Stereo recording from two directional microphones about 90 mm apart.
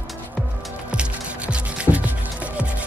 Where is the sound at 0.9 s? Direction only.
10° right (ahead or behind).